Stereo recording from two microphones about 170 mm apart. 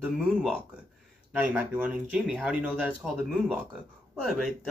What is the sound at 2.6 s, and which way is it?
Speech, 10° right (ahead or behind).